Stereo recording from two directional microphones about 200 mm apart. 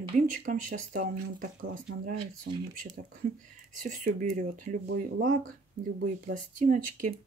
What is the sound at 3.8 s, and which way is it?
Speech, 35° right (ahead or behind).